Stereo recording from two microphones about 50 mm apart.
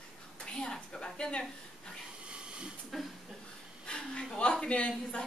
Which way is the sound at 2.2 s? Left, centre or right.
Right.